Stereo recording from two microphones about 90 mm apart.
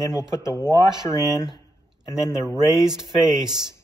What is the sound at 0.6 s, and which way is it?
Speech, 50° right (ahead or behind).